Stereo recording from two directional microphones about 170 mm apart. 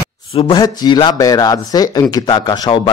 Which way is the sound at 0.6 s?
25° left (ahead or behind).